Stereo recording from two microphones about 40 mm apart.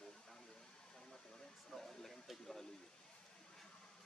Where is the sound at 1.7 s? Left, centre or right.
Centre.